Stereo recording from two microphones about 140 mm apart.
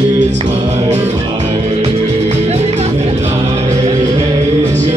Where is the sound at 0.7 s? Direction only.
55° right (ahead or behind).